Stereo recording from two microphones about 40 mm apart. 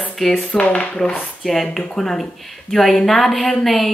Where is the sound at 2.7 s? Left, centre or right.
Centre.